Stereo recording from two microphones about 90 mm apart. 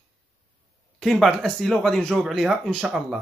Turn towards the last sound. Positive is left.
turn(degrees=-5)  # may be behind; listen again after turning